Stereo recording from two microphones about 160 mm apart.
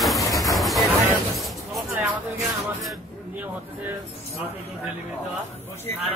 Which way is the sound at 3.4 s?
10° right (ahead or behind).